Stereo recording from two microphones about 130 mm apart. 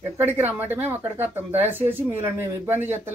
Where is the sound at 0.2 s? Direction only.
15° right (ahead or behind).